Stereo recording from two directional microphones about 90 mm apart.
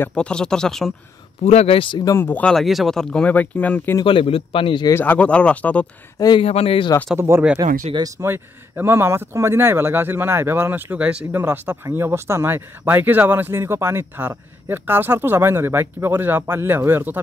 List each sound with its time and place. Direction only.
0.1 s speech: 10° left (ahead or behind)
1.7 s speech: 70° left (ahead or behind)
2.1 s speech: 25° left (ahead or behind)
2.4 s speech: centre (ahead or behind)
4.0 s a man's voice: 85° left
4.9 s speech: 20° left (ahead or behind)
6.3 s speech: 90° left
7.2 s speech: 30° right (ahead or behind)